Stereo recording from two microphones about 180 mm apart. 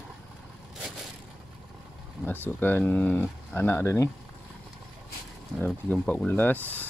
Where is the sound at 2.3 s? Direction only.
10° left (ahead or behind).